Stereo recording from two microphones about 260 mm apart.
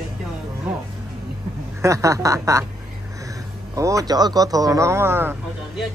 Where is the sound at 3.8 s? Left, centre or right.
Centre.